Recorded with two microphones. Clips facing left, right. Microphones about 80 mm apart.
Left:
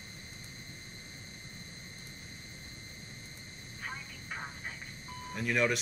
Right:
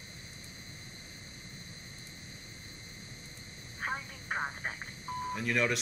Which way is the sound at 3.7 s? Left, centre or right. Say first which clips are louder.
Right 6 dB; right.